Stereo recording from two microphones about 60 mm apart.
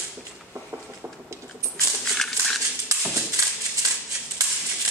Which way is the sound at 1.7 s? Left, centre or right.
Centre.